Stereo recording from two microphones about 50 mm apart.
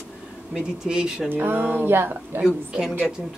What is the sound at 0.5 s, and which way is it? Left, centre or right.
Speech, centre.